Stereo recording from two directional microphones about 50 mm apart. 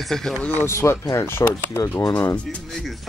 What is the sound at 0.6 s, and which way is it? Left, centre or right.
Speech, left.